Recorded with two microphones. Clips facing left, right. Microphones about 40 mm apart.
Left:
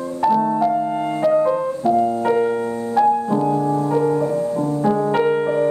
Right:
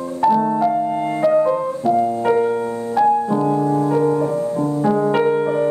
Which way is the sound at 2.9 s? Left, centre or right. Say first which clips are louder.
Right 1 dB; centre.